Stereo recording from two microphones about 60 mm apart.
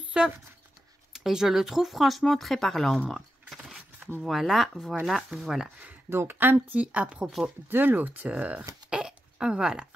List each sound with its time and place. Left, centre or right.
0.2 s speech: centre
3.1 s typing: centre
3.5 s keys jangling: centre
4.2 s speech: centre
6.0 s speech: right
6.8 s speech: right
7.7 s speech: right
8.9 s a sound: centre